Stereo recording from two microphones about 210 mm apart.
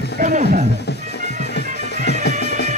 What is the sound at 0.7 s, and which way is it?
Music, 55° left (ahead or behind).